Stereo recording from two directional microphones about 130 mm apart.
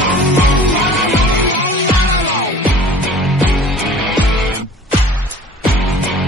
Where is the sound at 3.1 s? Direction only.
Centre (ahead or behind).